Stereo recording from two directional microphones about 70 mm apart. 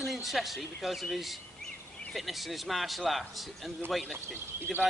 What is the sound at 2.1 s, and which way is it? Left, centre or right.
Speech, centre.